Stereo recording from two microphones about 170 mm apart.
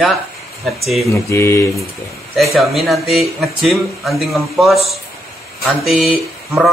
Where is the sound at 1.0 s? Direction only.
15° left (ahead or behind).